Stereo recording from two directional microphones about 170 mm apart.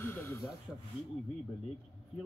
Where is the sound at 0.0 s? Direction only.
15° left (ahead or behind).